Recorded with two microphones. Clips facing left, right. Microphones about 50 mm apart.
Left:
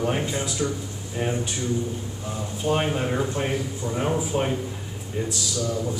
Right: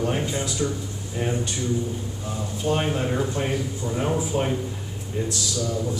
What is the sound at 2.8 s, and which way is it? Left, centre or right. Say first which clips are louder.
A man's voice: even; centre.